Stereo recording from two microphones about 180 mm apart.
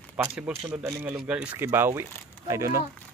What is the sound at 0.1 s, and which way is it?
A man's voice, 10° right (ahead or behind).